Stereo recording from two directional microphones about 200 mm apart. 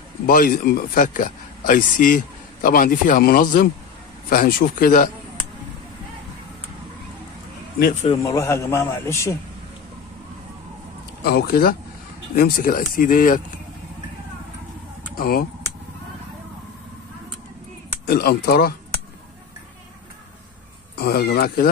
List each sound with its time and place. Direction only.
0.3 s a man's voice: 45° left (ahead or behind)
8.2 s a man's voice: 15° left (ahead or behind)
11.2 s a man's voice: 50° left (ahead or behind)
15.1 s speech: 50° left (ahead or behind)
18.0 s a man's voice: 50° left (ahead or behind)
20.9 s a man's voice: 50° left (ahead or behind)